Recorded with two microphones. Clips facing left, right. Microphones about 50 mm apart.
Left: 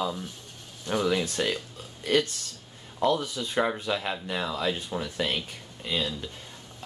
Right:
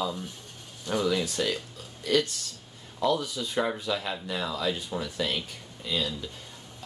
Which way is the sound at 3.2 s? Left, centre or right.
Left.